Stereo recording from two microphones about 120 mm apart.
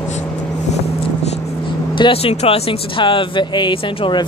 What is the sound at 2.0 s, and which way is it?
Speech, 50° left (ahead or behind).